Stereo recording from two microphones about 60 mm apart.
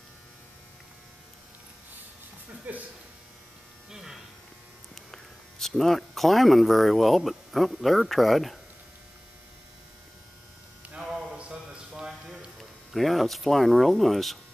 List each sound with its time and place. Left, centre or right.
2.7 s speech: right
3.9 s electric shaver: centre
5.1 s speech: centre
11.3 s a sound: centre
12.5 s speech: centre